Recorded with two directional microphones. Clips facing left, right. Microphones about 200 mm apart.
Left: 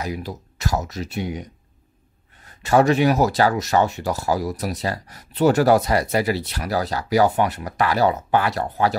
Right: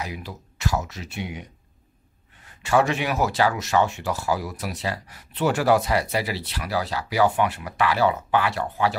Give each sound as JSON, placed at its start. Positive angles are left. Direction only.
{"t": 0.0, "sound": "speech", "side_deg": 40}